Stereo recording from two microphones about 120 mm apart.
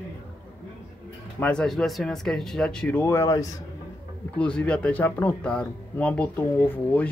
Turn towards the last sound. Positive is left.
turn(degrees=15)  # may be behind; listen again after turning